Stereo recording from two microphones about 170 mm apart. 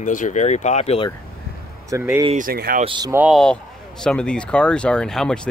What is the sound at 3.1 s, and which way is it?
Speech, centre (ahead or behind).